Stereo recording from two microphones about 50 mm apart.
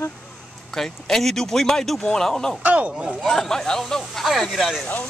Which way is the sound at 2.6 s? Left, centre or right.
Right.